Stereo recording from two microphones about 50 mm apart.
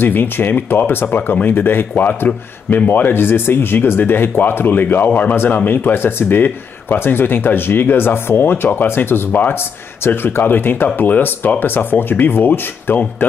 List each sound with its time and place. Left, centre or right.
0.0 s speech: left